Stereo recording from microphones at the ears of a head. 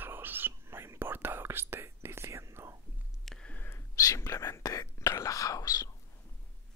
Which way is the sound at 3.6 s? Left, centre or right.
Left.